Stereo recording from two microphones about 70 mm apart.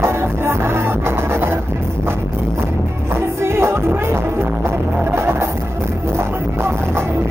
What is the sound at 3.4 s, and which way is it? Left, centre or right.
Music, right.